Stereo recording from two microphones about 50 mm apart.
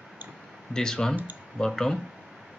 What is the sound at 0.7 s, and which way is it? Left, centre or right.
Speech, centre.